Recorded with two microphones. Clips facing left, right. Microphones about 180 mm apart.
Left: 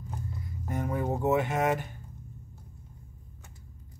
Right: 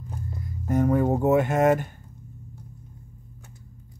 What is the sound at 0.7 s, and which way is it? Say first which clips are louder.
Speech: right 9 dB; 45° right (ahead or behind).